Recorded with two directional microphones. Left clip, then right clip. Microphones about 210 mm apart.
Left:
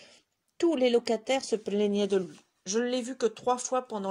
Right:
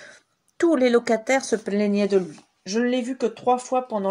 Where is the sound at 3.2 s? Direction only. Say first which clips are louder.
Right 6 dB; 40° left (ahead or behind).